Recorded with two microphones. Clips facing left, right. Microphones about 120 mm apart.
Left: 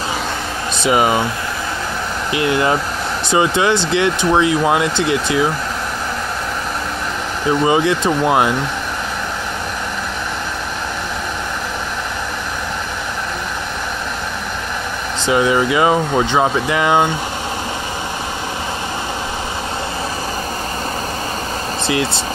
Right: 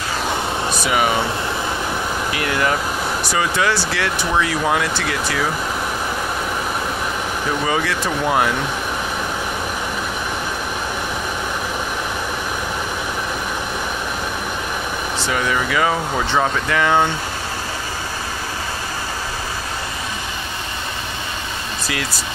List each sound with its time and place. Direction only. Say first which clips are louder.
0.7 s speech: left 5 dB; 25° left (ahead or behind)
2.3 s speech: left 6 dB; 25° left (ahead or behind)
7.6 s speech: left 8 dB; 20° left (ahead or behind)
15.2 s speech: left 7 dB; 20° left (ahead or behind)
21.8 s speech: left 8 dB; 25° left (ahead or behind)